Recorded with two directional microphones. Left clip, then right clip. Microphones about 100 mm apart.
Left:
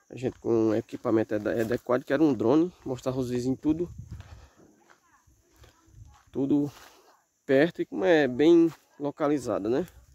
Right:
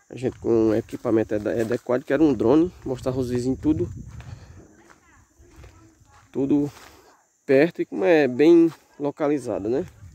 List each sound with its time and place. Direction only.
0.1 s speech: centre (ahead or behind)
6.3 s speech: 10° left (ahead or behind)
9.3 s speech: 35° left (ahead or behind)